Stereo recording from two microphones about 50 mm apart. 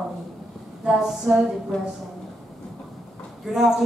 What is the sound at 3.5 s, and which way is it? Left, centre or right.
Speech, centre.